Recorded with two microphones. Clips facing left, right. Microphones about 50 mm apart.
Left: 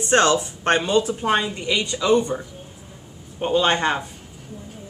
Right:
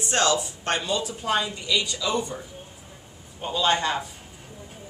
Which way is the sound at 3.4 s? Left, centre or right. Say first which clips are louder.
Left 4 dB; left.